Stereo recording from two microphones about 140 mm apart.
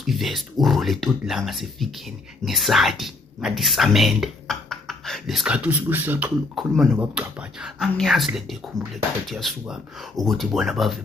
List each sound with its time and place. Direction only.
0.0 s speech: centre (ahead or behind)
6.5 s speech: centre (ahead or behind)